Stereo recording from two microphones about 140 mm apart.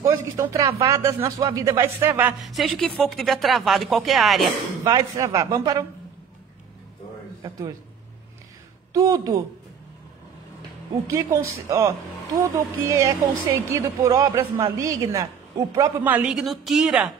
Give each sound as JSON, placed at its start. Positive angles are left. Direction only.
{"t": 0.0, "sound": "a woman's voice", "side_deg": -20}
{"t": 2.4, "sound": "speech", "side_deg": 0}
{"t": 4.8, "sound": "a woman's voice", "side_deg": -25}
{"t": 8.9, "sound": "a woman's voice", "side_deg": -25}
{"t": 11.1, "sound": "a woman's voice", "side_deg": -20}
{"t": 16.1, "sound": "speech", "side_deg": -5}